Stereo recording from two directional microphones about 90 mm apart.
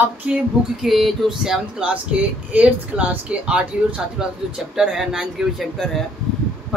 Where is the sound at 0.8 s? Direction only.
Centre (ahead or behind).